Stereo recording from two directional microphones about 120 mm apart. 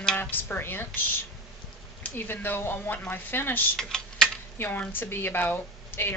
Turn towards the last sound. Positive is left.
turn(degrees=15)  # may be behind; listen again after turning